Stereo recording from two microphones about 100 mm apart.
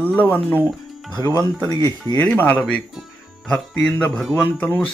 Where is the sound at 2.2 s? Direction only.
15° left (ahead or behind).